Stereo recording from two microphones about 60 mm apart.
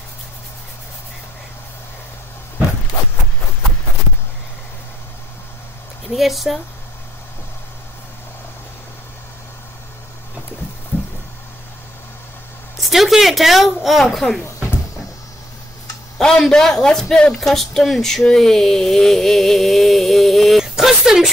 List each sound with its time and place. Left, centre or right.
6.0 s speech: centre
10.9 s a sound: left
12.7 s a woman's voice: centre
16.2 s a man's voice: centre